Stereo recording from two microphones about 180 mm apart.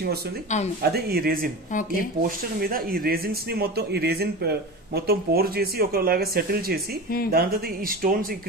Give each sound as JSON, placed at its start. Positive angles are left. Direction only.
{"t": 0.8, "sound": "speech", "side_deg": -60}
{"t": 1.7, "sound": "speech", "side_deg": 45}
{"t": 2.2, "sound": "speech", "side_deg": -55}